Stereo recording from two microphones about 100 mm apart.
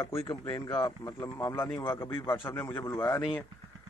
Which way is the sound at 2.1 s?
55° left (ahead or behind).